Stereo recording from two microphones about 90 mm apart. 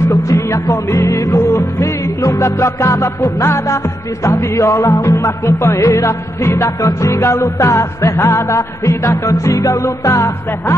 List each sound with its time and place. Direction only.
0.1 s music: 35° left (ahead or behind)